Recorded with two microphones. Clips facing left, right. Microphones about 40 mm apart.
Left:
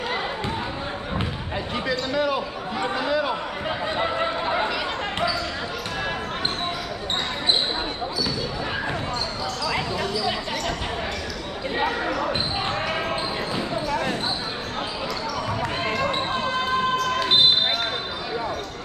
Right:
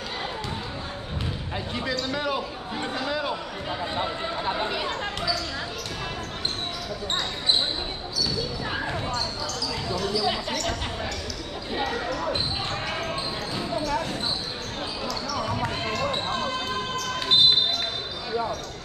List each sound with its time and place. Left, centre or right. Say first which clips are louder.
1.9 s speech: left 4 dB; centre
4.0 s a sound: left 6 dB; left
11.7 s basketball bounce: left 3 dB; left
15.8 s basketball bounce: left 3 dB; centre